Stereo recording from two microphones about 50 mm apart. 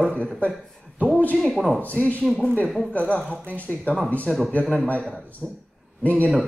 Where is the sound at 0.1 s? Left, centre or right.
Left.